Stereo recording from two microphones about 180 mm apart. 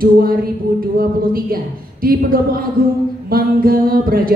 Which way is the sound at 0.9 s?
55° right (ahead or behind).